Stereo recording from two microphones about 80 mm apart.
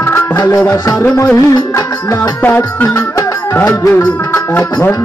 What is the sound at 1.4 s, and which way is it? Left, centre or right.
Music, left.